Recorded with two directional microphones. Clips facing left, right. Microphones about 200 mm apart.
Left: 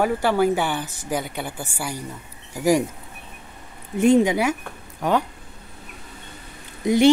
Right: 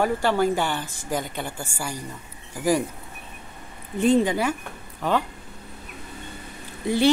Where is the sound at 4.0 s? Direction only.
10° left (ahead or behind).